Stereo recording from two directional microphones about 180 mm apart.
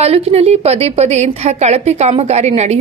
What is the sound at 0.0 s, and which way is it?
A woman's voice, 35° right (ahead or behind).